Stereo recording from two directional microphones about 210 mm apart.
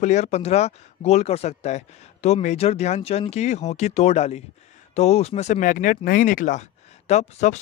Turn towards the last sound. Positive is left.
turn(degrees=30)  # may be behind; listen again after turning